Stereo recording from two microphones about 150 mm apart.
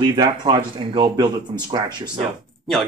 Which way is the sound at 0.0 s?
30° right (ahead or behind).